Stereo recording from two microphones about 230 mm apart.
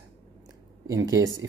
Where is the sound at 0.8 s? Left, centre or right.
Centre.